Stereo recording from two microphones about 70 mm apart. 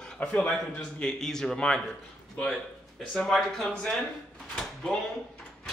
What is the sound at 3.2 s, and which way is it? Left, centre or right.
Speech, centre.